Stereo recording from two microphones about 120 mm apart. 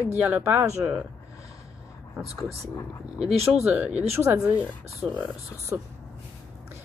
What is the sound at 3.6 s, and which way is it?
Speech, 10° right (ahead or behind).